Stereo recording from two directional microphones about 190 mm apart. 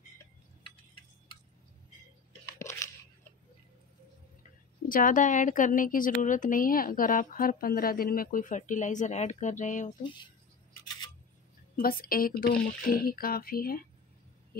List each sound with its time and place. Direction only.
2.6 s crunch: 15° left (ahead or behind)
4.4 s a woman's voice: 45° left (ahead or behind)
10.0 s speech: 25° left (ahead or behind)
11.7 s a woman's voice: 50° left (ahead or behind)
14.5 s heart sounds: 55° left (ahead or behind)